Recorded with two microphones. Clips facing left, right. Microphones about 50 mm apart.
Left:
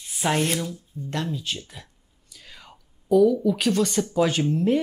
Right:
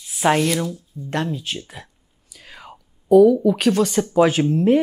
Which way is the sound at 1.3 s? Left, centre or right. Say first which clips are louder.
Right 3 dB; centre.